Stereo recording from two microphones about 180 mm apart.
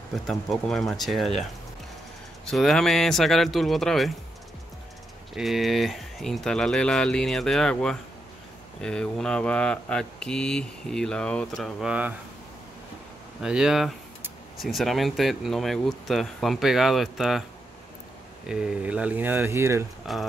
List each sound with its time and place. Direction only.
0.1 s speech: centre (ahead or behind)
2.4 s speech: centre (ahead or behind)
5.3 s speech: centre (ahead or behind)
13.4 s speech: 5° right (ahead or behind)
18.5 s speech: 5° right (ahead or behind)